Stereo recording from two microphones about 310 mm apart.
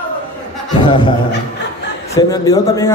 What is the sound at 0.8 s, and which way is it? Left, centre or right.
Speech, centre.